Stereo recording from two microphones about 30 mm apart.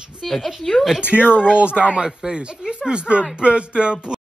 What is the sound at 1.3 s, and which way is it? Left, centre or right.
Speech, right.